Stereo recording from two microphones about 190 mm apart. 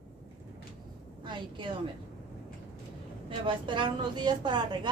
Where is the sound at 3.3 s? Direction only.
25° right (ahead or behind).